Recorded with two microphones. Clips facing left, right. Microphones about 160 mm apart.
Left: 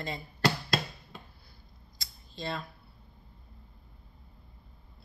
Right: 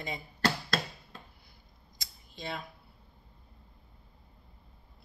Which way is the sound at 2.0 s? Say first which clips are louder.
Left 4 dB; 15° right (ahead or behind).